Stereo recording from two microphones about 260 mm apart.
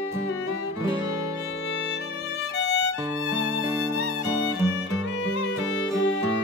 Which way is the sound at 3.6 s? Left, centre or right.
Centre.